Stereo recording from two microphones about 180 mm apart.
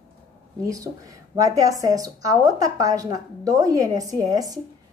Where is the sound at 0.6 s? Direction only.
20° right (ahead or behind).